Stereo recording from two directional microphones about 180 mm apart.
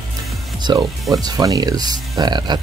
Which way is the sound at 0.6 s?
20° right (ahead or behind).